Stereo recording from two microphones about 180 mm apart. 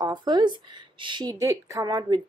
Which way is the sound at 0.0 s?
25° right (ahead or behind).